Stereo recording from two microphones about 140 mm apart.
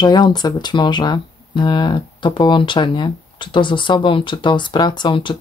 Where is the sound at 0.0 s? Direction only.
30° left (ahead or behind).